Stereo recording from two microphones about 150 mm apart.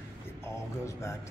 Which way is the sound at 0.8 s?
20° left (ahead or behind).